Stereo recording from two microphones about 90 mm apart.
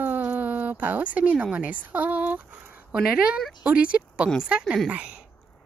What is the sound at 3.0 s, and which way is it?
A woman's voice, 10° right (ahead or behind).